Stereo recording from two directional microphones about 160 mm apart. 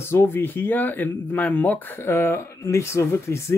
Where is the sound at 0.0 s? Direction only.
15° left (ahead or behind).